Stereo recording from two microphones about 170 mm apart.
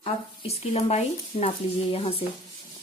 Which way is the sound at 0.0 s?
35° left (ahead or behind).